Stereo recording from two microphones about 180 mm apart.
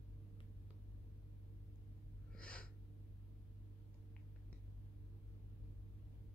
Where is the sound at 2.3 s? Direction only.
5° left (ahead or behind).